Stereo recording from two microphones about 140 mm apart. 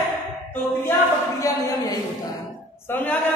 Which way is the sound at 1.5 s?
25° left (ahead or behind).